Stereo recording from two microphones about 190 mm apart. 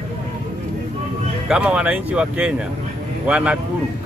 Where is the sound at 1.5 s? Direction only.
5° right (ahead or behind).